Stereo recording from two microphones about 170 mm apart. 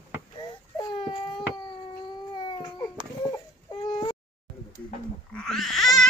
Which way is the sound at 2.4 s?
25° left (ahead or behind).